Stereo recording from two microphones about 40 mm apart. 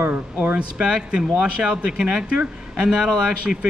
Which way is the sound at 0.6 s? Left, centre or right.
Right.